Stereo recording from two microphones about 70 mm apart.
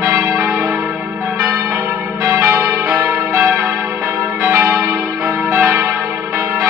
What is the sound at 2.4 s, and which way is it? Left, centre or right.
Change ringing, right.